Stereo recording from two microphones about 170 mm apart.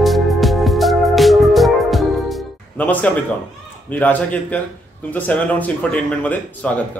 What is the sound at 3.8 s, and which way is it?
Speech, 10° left (ahead or behind).